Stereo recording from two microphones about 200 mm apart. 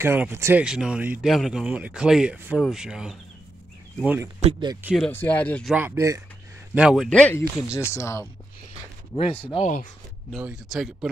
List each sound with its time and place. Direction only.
0.0 s speech: 10° right (ahead or behind)
4.4 s speech: 25° right (ahead or behind)
4.8 s speech: centre (ahead or behind)
5.8 s speech: 10° right (ahead or behind)
6.7 s speech: 5° right (ahead or behind); by 8.3 s 15° left (ahead or behind)
9.1 s speech: 30° left (ahead or behind)
10.3 s speech: centre (ahead or behind)